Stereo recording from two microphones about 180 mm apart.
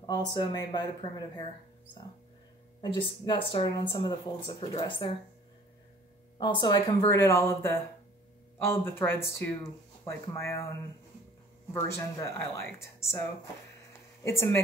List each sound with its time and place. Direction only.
0.0 s speech: 20° left (ahead or behind)
2.8 s speech: 25° left (ahead or behind)
6.3 s speech: 25° left (ahead or behind)
11.7 s speech: 15° left (ahead or behind)